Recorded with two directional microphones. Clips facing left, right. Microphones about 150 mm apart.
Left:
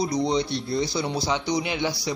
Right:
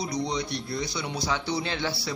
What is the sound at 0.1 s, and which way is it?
Speech, 30° left (ahead or behind).